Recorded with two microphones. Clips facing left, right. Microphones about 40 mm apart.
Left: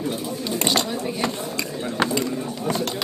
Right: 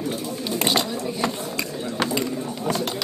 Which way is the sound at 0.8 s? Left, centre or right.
Left.